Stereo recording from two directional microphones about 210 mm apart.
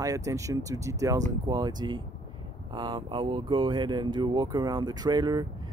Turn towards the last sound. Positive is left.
turn(degrees=-20)  # may be behind; listen again after turning